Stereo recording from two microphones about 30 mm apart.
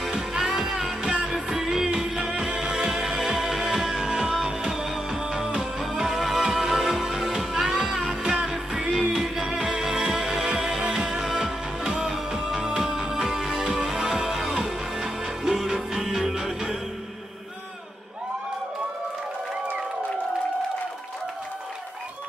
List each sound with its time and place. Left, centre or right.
0.4 s music: centre